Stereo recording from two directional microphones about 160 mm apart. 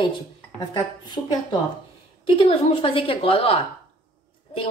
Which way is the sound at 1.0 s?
25° left (ahead or behind).